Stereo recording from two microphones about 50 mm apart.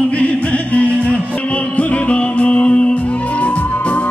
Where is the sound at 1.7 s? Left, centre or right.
Left.